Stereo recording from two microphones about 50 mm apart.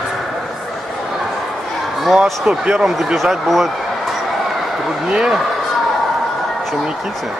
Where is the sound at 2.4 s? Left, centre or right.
Centre.